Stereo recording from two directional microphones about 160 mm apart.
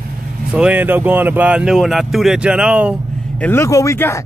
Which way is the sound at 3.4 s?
15° left (ahead or behind).